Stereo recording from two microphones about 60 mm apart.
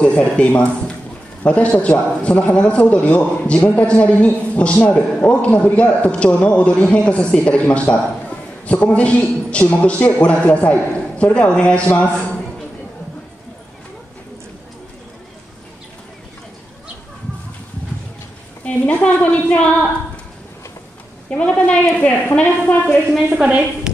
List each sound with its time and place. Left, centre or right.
0.0 s a man's voice: left
18.6 s a man's voice: left
21.3 s a man's voice: centre
23.3 s a woman's voice: centre